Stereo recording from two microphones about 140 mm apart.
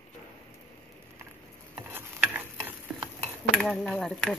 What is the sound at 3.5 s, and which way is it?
Speech, 5° left (ahead or behind).